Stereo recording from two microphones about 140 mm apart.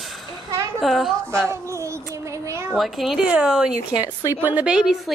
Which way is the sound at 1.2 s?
20° right (ahead or behind).